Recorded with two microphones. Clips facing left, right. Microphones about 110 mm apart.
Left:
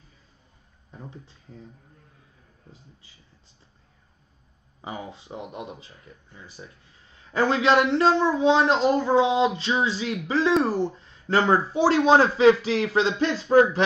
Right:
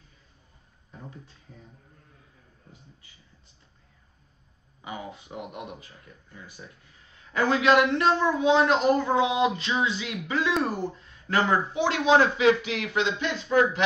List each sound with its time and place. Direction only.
4.8 s speech: 30° left (ahead or behind)